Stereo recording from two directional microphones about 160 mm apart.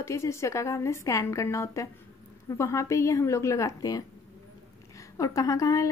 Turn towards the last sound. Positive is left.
turn(degrees=20)  # may be behind; listen again after turning